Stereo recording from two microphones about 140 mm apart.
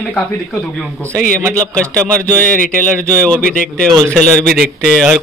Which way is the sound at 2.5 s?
75° left (ahead or behind).